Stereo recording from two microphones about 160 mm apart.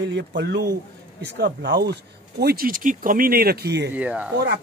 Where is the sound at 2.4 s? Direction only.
70° right (ahead or behind); by 3.9 s 90° right.